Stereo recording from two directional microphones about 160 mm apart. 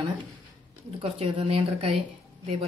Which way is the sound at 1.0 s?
35° right (ahead or behind).